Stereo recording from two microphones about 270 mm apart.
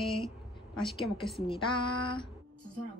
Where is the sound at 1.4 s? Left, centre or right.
Centre.